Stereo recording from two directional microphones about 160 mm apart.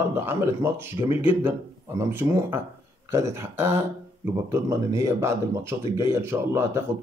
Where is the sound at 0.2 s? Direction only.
15° right (ahead or behind).